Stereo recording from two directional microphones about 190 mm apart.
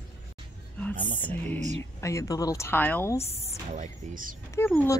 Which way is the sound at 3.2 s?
30° left (ahead or behind).